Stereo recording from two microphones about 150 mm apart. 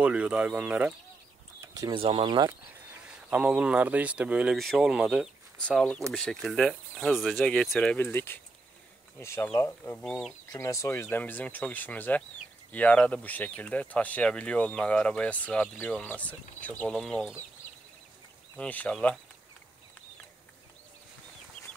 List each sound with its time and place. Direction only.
0.0 s speech: 10° right (ahead or behind)
1.6 s a sound: 25° right (ahead or behind)
2.0 s speech: 40° right (ahead or behind)
3.3 s speech: 10° right (ahead or behind)
10.5 s speech: 20° left (ahead or behind)
18.6 s speech: 10° left (ahead or behind)